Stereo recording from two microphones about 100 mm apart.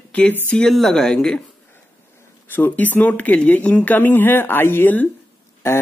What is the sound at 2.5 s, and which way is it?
Speech, 15° left (ahead or behind).